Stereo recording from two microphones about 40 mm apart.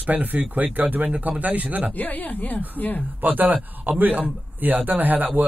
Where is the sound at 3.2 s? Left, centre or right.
Right.